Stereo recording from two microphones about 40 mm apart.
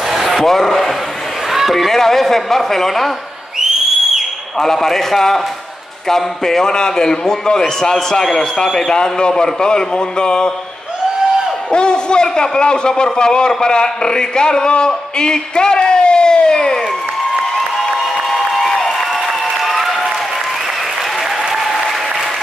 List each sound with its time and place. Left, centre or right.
0.1 s speech: centre
1.5 s a sound: centre
1.9 s a man's voice: centre
3.5 s whistle: centre
4.6 s a man's voice: centre
11.7 s a man's voice: left
17.8 s a sound: centre
19.5 s applause: centre
21.2 s applause: centre
21.5 s applause: centre